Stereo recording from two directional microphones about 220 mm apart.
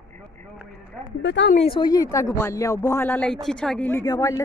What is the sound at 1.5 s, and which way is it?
A man's voice, 25° left (ahead or behind).